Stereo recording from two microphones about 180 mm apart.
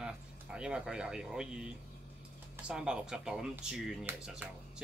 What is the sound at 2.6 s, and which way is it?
Speech, 5° right (ahead or behind).